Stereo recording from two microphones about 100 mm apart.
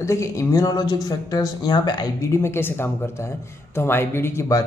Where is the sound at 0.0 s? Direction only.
30° left (ahead or behind); by 2.0 s 45° left (ahead or behind).